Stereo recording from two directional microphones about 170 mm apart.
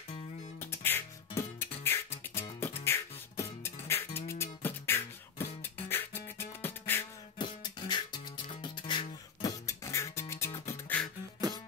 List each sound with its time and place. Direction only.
0.6 s music: 15° left (ahead or behind)
7.3 s music: 25° left (ahead or behind)
11.5 s music: 25° right (ahead or behind)